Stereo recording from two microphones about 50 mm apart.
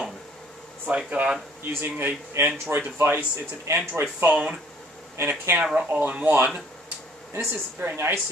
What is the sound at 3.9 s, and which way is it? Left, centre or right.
A man's voice, right.